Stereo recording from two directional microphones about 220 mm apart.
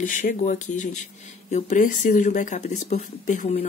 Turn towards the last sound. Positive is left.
turn(degrees=35)  # may be behind; listen again after turning